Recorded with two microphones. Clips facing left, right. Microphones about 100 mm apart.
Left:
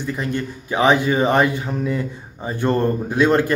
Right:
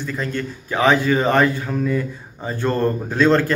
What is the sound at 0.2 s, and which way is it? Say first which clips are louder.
Speech: left 1 dB; 20° left (ahead or behind).